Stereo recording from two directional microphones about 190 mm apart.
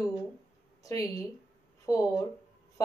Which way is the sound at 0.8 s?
20° left (ahead or behind).